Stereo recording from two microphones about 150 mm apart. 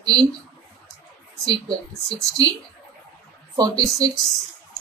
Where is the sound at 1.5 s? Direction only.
25° right (ahead or behind).